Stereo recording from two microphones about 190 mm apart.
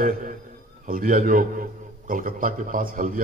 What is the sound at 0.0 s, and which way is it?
A man's voice, 45° right (ahead or behind).